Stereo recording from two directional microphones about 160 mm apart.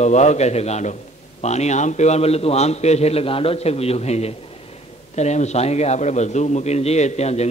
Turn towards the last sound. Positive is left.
turn(degrees=45)  # may be behind; listen again after turning